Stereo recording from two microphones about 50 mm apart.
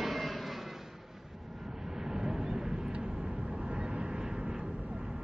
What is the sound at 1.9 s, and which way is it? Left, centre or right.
Vehicle, centre.